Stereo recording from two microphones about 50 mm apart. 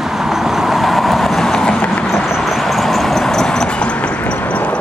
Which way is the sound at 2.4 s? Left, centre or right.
Centre.